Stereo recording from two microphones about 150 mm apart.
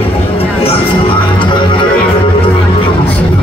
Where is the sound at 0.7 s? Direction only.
35° left (ahead or behind).